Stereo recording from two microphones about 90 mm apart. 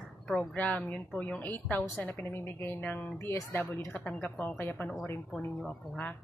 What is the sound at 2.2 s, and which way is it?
Speech, 30° left (ahead or behind).